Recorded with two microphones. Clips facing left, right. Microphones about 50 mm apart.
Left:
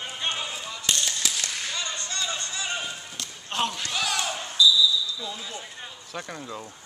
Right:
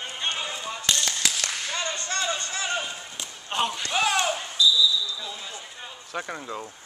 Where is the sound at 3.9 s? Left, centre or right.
Right.